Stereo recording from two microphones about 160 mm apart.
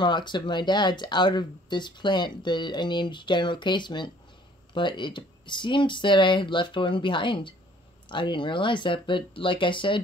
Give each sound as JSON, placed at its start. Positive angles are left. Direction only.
{"t": 0.0, "sound": "speech", "side_deg": 30}